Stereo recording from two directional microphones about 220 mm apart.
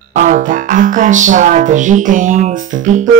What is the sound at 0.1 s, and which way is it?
Speech, 35° right (ahead or behind).